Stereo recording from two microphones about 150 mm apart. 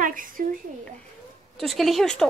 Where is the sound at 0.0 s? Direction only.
65° right (ahead or behind).